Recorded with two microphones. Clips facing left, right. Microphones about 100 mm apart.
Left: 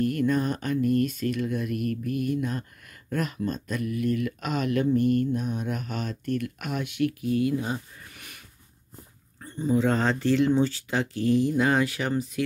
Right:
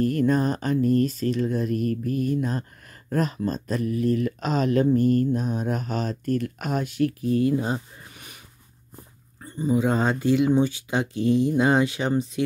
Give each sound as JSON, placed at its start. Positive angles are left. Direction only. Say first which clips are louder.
{"t": 0.0, "sound": "speech", "louder": "right 3 dB", "side_deg": -35}
{"t": 9.4, "sound": "speech", "louder": "right 1 dB", "side_deg": -10}